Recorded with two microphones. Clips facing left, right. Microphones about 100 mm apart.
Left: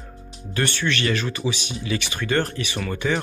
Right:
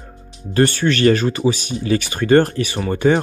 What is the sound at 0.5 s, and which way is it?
Speech, 40° right (ahead or behind).